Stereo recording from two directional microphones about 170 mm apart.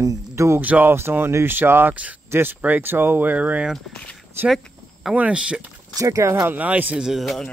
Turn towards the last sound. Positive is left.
turn(degrees=0)  # may be behind; listen again after turning